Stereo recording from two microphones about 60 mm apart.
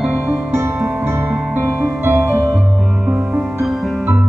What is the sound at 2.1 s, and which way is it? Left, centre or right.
Music, right.